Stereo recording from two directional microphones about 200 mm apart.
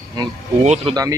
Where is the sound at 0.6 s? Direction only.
35° right (ahead or behind).